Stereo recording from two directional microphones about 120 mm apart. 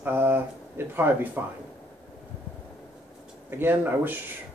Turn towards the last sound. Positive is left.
turn(degrees=-15)  # may be behind; listen again after turning